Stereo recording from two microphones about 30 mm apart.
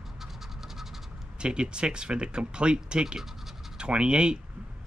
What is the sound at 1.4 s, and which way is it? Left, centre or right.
Speech, right.